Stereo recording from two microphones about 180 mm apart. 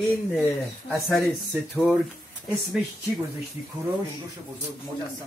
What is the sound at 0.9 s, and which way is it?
Speech, centre (ahead or behind).